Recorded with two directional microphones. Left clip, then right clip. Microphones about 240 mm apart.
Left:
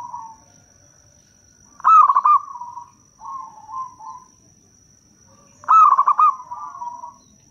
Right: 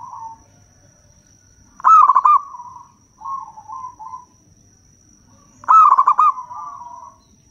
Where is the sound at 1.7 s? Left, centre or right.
Centre.